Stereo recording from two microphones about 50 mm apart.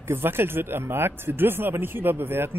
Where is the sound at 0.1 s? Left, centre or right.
Right.